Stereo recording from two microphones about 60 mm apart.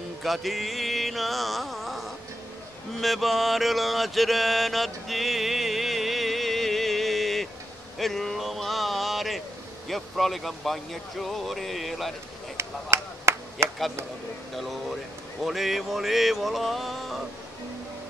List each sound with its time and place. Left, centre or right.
0.2 s music: centre
3.0 s mantra: centre
8.0 s a sound: centre
9.8 s speech: centre
12.5 s a sound: right
14.5 s speech: centre